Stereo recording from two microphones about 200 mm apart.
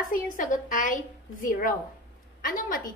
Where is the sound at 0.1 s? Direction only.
40° left (ahead or behind).